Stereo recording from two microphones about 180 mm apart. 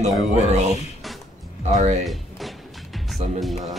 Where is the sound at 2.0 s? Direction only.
Centre (ahead or behind).